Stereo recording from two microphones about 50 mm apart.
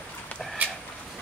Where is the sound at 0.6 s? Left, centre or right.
Right.